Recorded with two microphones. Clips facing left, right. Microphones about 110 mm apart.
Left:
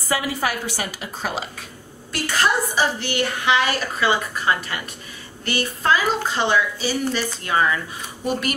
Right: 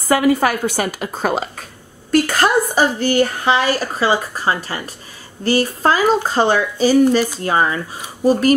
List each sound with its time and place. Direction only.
0.1 s a woman's voice: 50° right (ahead or behind)